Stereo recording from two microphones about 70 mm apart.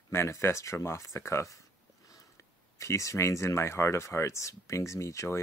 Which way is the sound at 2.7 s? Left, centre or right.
Left.